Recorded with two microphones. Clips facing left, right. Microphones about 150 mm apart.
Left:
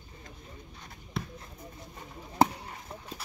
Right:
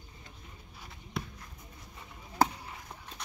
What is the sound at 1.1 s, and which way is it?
Basketball bounce, centre (ahead or behind).